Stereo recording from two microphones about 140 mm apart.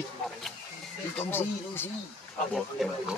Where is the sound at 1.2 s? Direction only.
15° left (ahead or behind).